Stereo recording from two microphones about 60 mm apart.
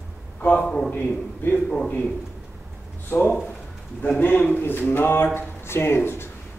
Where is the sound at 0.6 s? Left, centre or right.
Centre.